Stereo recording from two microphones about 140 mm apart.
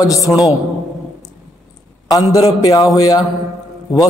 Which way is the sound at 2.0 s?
25° left (ahead or behind).